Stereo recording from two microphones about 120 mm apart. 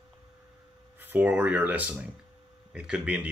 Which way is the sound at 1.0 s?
15° right (ahead or behind).